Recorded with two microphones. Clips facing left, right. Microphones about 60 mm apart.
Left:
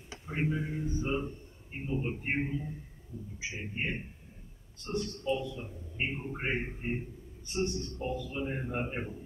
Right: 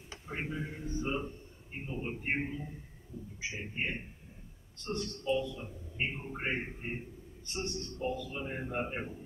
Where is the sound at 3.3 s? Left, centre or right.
Centre.